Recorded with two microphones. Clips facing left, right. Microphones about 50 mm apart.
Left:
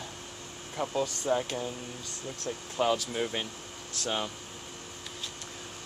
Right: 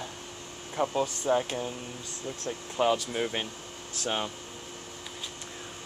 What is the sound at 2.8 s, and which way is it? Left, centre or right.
Speech, centre.